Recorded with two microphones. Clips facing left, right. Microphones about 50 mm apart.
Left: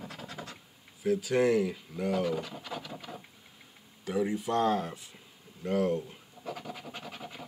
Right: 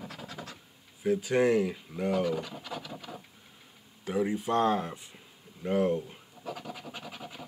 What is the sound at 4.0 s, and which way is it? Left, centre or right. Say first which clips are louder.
Speech: right 1 dB; centre.